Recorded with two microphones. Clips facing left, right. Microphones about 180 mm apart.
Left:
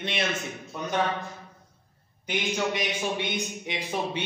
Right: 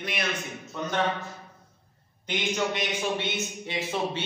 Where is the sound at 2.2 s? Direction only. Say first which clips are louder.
Even; 15° left (ahead or behind).